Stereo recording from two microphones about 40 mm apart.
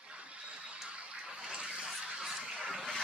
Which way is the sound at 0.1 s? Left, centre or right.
Right.